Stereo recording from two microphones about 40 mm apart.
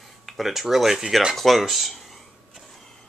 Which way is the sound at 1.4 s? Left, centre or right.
Centre.